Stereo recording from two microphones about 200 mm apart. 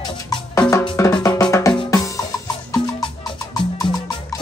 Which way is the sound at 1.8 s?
15° left (ahead or behind).